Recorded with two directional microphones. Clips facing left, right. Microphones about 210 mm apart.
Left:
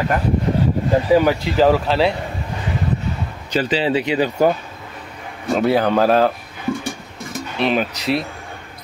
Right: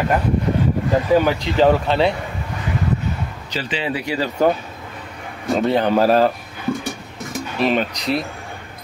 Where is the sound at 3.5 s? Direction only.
50° left (ahead or behind).